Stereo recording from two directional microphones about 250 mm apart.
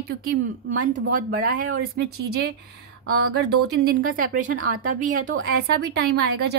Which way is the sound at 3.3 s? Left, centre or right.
Right.